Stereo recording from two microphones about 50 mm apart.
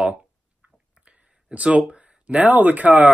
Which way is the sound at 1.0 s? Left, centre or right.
Right.